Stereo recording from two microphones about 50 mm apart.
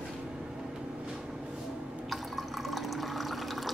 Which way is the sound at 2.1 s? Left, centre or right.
Centre.